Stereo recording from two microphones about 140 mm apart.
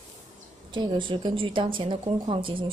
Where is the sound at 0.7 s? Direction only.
35° right (ahead or behind).